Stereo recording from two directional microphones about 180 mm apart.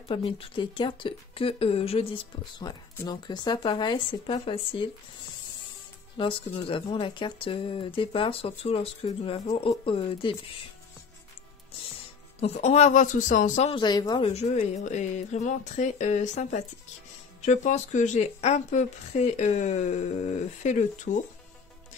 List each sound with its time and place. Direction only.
0.1 s speech: 30° left (ahead or behind)
6.1 s speech: 30° left (ahead or behind)
12.4 s speech: 35° left (ahead or behind)
13.7 s speech: 25° left (ahead or behind)
14.3 s speech: 35° left (ahead or behind)